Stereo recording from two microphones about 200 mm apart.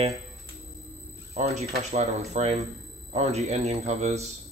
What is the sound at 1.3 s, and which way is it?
A man's voice, 30° right (ahead or behind).